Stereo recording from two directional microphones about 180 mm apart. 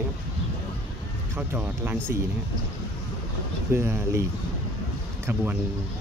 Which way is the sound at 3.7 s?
15° right (ahead or behind).